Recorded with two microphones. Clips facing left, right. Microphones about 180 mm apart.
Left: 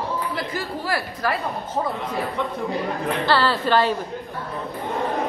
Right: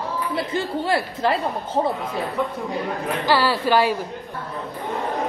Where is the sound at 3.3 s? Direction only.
10° right (ahead or behind).